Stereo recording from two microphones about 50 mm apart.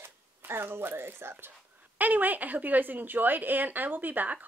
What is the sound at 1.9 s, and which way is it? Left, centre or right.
A woman's voice, right.